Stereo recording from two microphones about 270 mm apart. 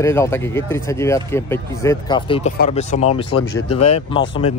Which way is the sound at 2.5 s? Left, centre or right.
Left.